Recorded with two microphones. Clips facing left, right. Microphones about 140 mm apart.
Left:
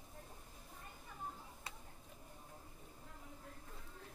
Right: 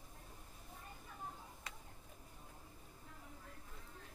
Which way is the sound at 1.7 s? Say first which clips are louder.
Left 1 dB; 25° left (ahead or behind).